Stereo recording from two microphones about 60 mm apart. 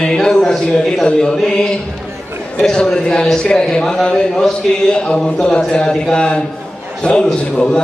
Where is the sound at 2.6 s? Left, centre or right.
Centre.